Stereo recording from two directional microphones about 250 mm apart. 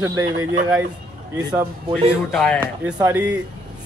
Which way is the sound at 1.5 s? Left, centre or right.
Centre.